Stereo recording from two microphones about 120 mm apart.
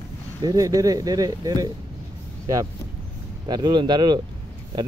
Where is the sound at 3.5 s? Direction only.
40° right (ahead or behind).